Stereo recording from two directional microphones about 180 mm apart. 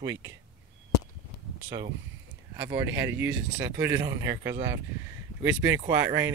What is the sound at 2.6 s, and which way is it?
Speech, 15° right (ahead or behind).